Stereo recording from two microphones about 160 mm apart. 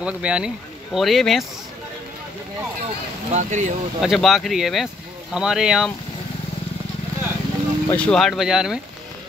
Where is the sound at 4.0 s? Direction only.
Centre (ahead or behind).